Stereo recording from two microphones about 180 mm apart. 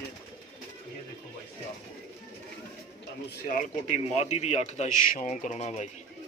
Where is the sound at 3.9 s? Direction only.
40° left (ahead or behind).